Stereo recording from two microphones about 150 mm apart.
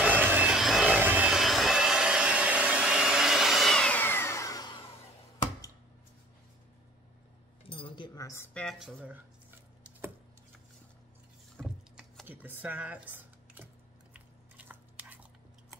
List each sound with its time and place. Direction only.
0.0 s vehicle: 10° right (ahead or behind); by 4.7 s 25° left (ahead or behind)
7.6 s chink: 35° left (ahead or behind)
8.5 s speech: centre (ahead or behind)
11.5 s vehicle: centre (ahead or behind)
12.3 s speech: 15° right (ahead or behind)
14.7 s biting: 10° right (ahead or behind)